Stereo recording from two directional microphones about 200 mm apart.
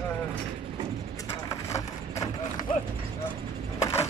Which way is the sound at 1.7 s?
15° left (ahead or behind).